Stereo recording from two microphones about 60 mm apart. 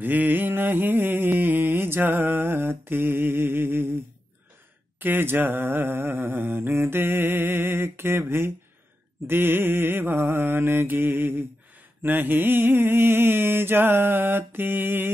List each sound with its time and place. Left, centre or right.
0.0 s mantra: right
4.9 s mantra: right